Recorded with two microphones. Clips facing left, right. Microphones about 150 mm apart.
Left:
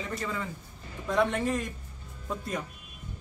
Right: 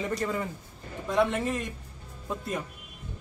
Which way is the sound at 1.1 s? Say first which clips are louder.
Right 1 dB; centre (ahead or behind).